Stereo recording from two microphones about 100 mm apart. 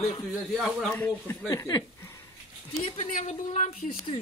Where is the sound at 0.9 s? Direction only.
20° left (ahead or behind).